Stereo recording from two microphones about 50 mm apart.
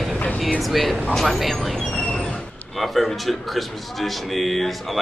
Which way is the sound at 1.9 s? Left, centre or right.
Left.